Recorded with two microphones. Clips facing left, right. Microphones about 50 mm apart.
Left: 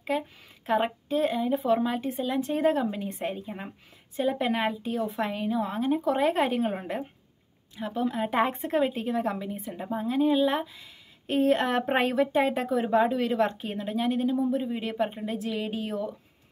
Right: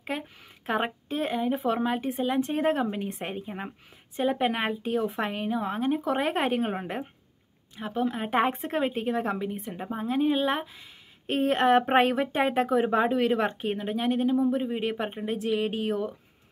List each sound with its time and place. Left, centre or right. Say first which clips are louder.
0.7 s speech: left 2 dB; centre
3.3 s a woman's voice: right 2 dB; right